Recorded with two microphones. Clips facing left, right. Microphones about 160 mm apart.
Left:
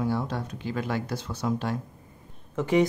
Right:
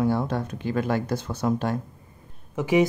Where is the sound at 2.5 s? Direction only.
10° right (ahead or behind).